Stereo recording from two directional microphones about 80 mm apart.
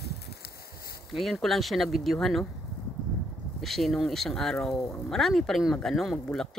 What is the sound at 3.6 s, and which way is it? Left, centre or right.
Speech, centre.